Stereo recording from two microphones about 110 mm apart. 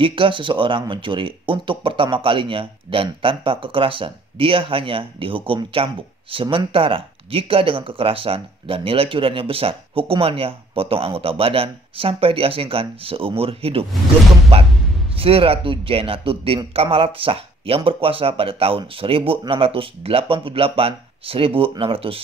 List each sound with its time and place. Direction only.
0.0 s speech: 50° right (ahead or behind)
15.1 s speech: 60° right (ahead or behind)